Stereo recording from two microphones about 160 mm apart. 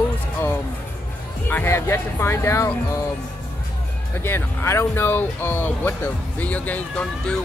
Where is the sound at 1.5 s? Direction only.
15° left (ahead or behind).